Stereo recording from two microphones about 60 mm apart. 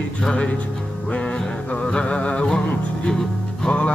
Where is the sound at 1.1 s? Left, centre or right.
Centre.